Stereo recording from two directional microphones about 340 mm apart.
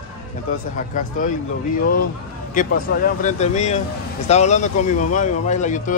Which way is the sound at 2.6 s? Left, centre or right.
Left.